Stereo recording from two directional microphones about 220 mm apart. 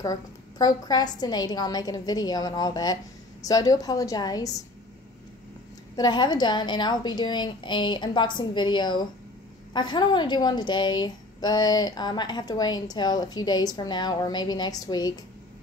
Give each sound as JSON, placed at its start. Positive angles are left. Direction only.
{"t": 0.0, "sound": "a woman's voice", "side_deg": 15}
{"t": 5.9, "sound": "a woman's voice", "side_deg": 20}